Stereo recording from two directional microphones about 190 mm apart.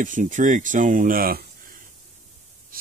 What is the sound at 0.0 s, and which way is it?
Speech, 40° right (ahead or behind).